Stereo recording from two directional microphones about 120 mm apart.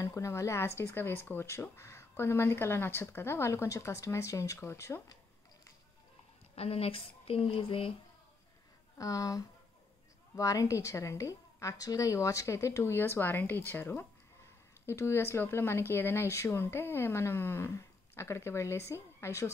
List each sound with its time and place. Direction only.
0.0 s speech: 25° left (ahead or behind)
6.5 s speech: 55° left (ahead or behind)
8.9 s speech: 30° left (ahead or behind)